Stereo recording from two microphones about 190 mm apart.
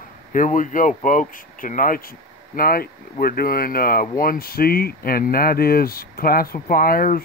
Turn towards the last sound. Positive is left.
turn(degrees=50)  # may be behind; listen again after turning